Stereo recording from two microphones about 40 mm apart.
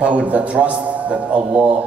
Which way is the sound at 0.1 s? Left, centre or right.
Right.